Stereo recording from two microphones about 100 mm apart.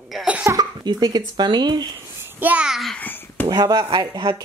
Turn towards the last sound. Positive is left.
turn(degrees=-45)  # may be behind; listen again after turning